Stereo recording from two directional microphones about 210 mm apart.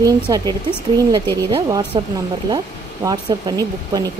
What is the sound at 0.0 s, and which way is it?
Speech, 20° right (ahead or behind).